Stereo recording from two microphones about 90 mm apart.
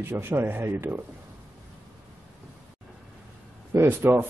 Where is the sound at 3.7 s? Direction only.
25° right (ahead or behind).